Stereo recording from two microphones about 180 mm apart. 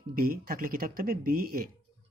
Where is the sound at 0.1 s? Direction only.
55° right (ahead or behind).